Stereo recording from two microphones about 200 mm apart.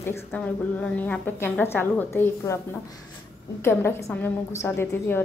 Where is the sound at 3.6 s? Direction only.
15° left (ahead or behind).